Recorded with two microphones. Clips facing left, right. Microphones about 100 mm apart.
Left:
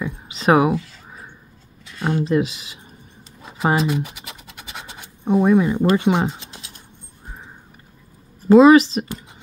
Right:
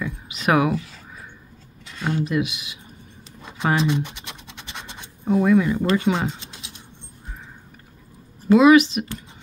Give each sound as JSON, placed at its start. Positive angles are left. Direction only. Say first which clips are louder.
{"t": 0.0, "sound": "a sound", "louder": "left 3 dB", "side_deg": 30}
{"t": 2.0, "sound": "speech", "louder": "left 4 dB", "side_deg": 25}
{"t": 3.7, "sound": "scratch", "louder": "left 1 dB", "side_deg": 5}
{"t": 5.2, "sound": "speech", "louder": "left 2 dB", "side_deg": 25}
{"t": 8.5, "sound": "speech", "louder": "left 3 dB", "side_deg": 35}